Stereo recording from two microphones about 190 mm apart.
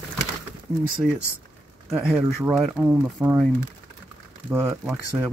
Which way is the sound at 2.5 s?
Centre (ahead or behind).